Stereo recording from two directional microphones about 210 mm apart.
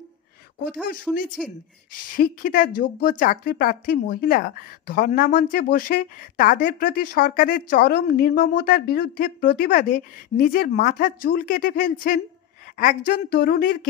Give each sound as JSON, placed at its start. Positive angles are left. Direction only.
{"t": 1.1, "sound": "speech", "side_deg": 5}
{"t": 1.9, "sound": "a woman's voice", "side_deg": 40}